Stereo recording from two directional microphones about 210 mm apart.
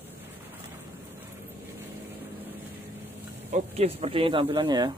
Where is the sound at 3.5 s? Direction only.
30° right (ahead or behind).